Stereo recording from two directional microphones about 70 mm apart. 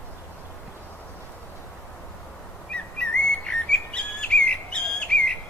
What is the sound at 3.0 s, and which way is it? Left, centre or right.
Bird vocalization, centre.